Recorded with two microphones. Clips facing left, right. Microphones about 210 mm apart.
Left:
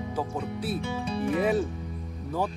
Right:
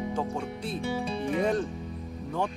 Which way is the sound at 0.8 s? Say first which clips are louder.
Even; 20° right (ahead or behind).